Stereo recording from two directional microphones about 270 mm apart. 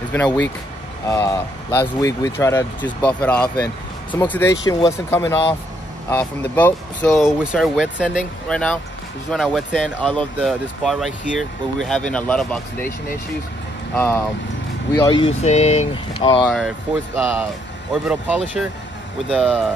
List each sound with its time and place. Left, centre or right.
0.1 s speech: centre
13.9 s speech: centre
16.4 s speech: centre